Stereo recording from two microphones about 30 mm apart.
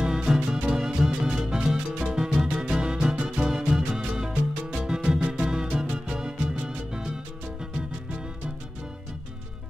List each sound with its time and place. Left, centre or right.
0.0 s music: centre
2.4 s music: right